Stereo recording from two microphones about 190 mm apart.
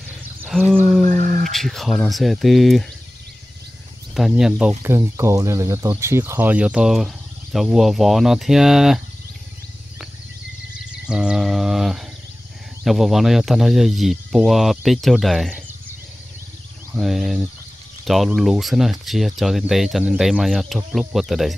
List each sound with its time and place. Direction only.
0.5 s a sound: centre (ahead or behind)
1.0 s a sound: 45° right (ahead or behind)
1.4 s speech: centre (ahead or behind)
4.1 s speech: centre (ahead or behind)
11.1 s mantra: 5° right (ahead or behind)
12.8 s speech: centre (ahead or behind)
16.9 s speech: centre (ahead or behind)